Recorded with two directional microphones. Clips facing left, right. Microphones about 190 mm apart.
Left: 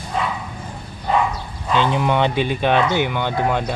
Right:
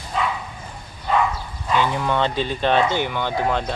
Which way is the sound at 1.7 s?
20° left (ahead or behind).